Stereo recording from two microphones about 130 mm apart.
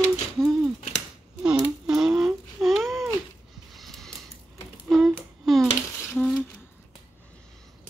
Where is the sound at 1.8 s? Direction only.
5° right (ahead or behind).